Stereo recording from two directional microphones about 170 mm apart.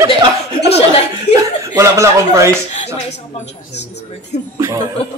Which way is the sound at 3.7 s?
90° left.